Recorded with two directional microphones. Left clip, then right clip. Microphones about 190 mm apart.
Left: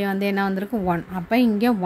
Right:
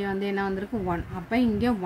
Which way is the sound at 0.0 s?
40° left (ahead or behind).